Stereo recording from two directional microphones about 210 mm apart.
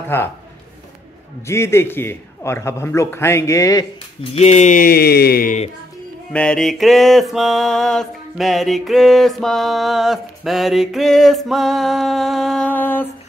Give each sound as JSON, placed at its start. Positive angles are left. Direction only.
{"t": 0.1, "sound": "a man's voice", "side_deg": 10}
{"t": 1.5, "sound": "a man's voice", "side_deg": 10}
{"t": 4.2, "sound": "speech", "side_deg": 30}
{"t": 6.3, "sound": "music", "side_deg": 5}